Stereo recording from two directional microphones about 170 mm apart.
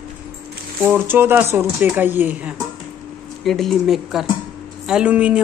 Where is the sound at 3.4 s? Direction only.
Centre (ahead or behind).